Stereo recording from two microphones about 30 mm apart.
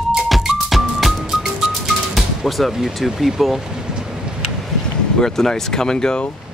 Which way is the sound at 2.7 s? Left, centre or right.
Centre.